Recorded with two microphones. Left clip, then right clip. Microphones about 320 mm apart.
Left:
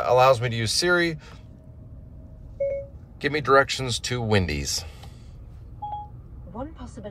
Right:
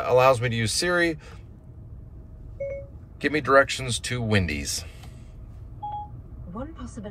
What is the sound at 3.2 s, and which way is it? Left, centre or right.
A man's voice, centre.